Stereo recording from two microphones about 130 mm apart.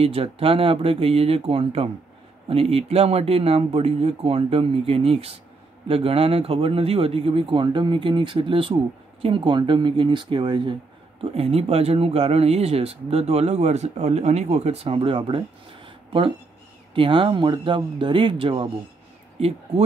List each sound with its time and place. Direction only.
0.0 s speech: 45° right (ahead or behind)
11.3 s speech: 50° right (ahead or behind)